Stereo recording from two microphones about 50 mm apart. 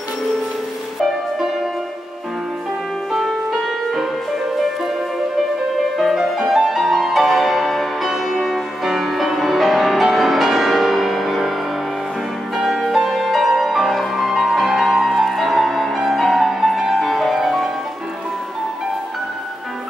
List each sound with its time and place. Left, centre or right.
3.1 s music: centre
5.8 s music: centre
12.5 s music: centre